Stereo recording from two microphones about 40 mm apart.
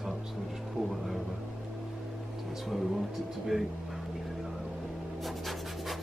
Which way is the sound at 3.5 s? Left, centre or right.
Centre.